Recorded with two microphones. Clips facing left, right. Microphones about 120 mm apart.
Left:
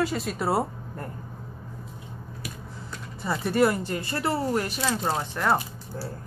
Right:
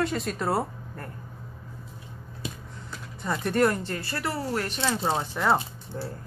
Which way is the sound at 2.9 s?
5° left (ahead or behind).